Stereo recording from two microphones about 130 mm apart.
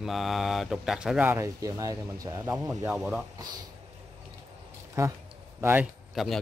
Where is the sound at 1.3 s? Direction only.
25° right (ahead or behind).